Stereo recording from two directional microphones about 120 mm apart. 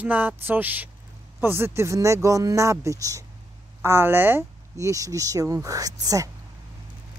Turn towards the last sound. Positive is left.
turn(degrees=-30)  # may be behind; listen again after turning